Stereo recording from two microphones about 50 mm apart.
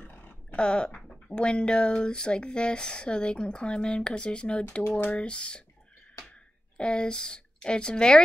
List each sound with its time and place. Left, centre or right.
0.0 s a sound: left
0.6 s speech: centre
6.8 s speech: centre